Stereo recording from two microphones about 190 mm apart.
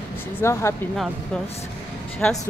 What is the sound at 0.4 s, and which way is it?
Speech, 15° left (ahead or behind).